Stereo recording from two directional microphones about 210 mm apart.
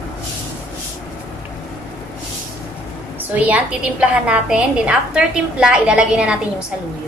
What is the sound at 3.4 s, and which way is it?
A woman's voice, 5° right (ahead or behind).